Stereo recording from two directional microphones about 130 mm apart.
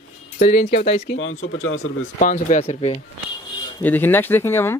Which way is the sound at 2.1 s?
80° left.